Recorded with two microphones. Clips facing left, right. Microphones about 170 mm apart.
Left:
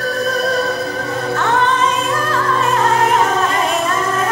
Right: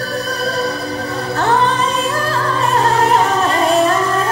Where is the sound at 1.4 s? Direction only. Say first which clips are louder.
Right 2 dB; 35° right (ahead or behind).